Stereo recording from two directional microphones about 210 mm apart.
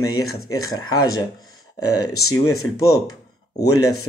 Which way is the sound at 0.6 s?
15° left (ahead or behind).